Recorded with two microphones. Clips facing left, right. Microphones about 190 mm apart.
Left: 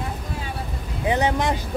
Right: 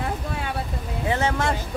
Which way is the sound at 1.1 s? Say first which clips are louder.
Left 2 dB; 15° left (ahead or behind).